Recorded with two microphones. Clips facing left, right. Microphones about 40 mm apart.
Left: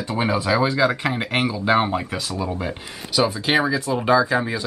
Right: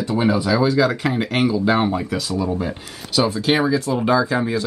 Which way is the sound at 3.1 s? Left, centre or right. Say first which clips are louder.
Right 1 dB; centre.